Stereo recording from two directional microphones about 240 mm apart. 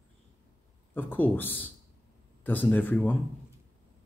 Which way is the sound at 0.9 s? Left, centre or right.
Centre.